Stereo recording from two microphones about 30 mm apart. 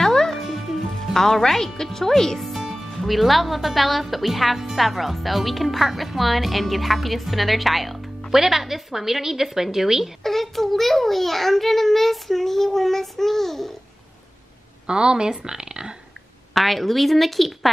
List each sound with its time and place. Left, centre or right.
0.0 s music: centre
1.1 s a child's voice: centre
8.3 s a woman's voice: centre
10.2 s a child's voice: centre
14.9 s speech: right
16.5 s a woman's voice: centre